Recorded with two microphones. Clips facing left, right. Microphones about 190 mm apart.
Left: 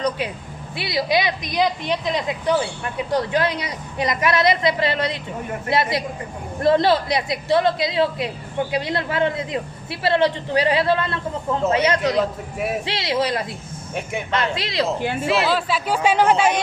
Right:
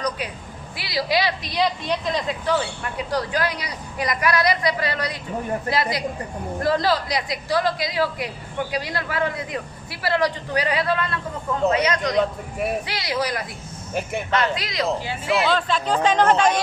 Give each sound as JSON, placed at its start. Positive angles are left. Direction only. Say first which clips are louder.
{"t": 0.7, "sound": "a woman's voice", "louder": "left 2 dB", "side_deg": 25}
{"t": 12.2, "sound": "a man's voice", "louder": "even", "side_deg": 0}
{"t": 12.8, "sound": "a woman's voice", "louder": "left 3 dB", "side_deg": 25}
{"t": 14.5, "sound": "a woman's voice", "louder": "left 2 dB", "side_deg": 30}
{"t": 15.0, "sound": "speech", "louder": "left 6 dB", "side_deg": 55}
{"t": 15.4, "sound": "speech", "louder": "even", "side_deg": 5}